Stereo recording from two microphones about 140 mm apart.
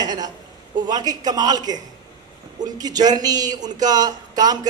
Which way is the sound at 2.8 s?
30° right (ahead or behind).